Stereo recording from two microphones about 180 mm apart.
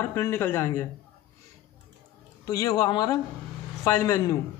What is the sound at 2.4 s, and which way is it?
A man's voice, 20° left (ahead or behind).